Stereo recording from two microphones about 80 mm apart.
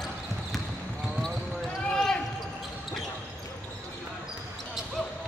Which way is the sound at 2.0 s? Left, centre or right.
Centre.